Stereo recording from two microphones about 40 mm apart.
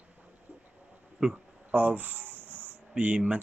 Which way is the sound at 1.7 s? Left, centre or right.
Right.